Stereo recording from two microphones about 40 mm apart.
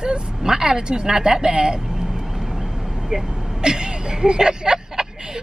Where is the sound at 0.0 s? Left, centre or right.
Centre.